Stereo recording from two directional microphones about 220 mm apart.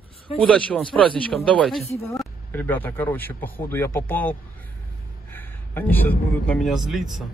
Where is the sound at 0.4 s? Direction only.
5° left (ahead or behind).